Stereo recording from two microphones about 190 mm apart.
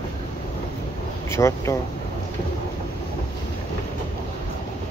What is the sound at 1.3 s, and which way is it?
Speech, 15° left (ahead or behind).